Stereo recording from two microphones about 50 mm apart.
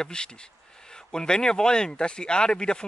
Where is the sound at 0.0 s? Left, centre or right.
Centre.